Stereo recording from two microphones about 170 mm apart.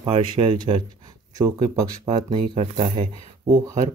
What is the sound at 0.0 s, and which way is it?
Speech, 30° right (ahead or behind).